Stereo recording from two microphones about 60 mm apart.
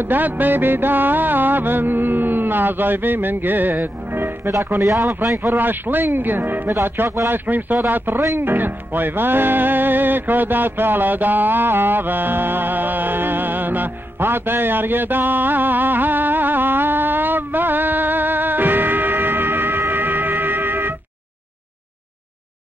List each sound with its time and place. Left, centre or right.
0.0 s music: right
4.5 s speech: right
5.2 s music: right